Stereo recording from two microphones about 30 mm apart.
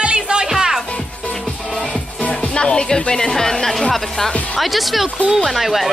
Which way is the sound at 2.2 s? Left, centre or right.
Left.